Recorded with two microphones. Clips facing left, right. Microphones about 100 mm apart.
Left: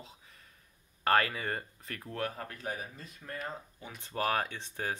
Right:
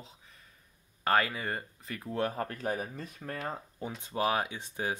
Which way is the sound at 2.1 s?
25° right (ahead or behind).